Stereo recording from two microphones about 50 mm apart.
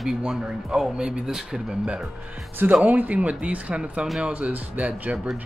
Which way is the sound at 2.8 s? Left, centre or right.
Right.